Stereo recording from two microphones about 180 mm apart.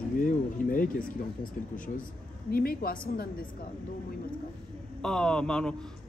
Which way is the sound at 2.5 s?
55° left (ahead or behind).